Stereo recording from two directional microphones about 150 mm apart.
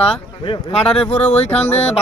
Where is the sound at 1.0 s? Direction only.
10° left (ahead or behind).